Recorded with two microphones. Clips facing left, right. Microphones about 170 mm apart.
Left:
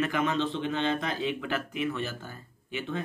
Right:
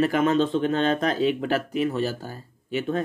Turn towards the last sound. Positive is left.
turn(degrees=-45)  # may be behind; listen again after turning